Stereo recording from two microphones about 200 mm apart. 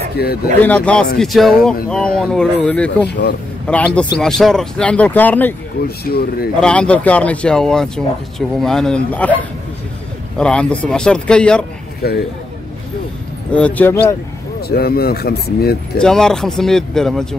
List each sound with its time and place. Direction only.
0.2 s speech: 50° left (ahead or behind)
0.6 s speech: 5° left (ahead or behind)
3.1 s speech: 55° left (ahead or behind)
3.6 s speech: 5° left (ahead or behind)
5.9 s speech: 50° left (ahead or behind)
6.6 s speech: 5° left (ahead or behind)
10.3 s speech: 5° left (ahead or behind)
12.0 s speech: 50° left (ahead or behind)
13.5 s speech: 5° left (ahead or behind)
14.7 s speech: 50° left (ahead or behind)
16.0 s speech: 5° left (ahead or behind)